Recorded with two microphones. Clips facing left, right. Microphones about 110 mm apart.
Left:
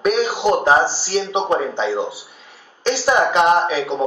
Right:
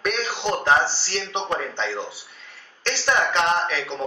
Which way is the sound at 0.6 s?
30° left (ahead or behind).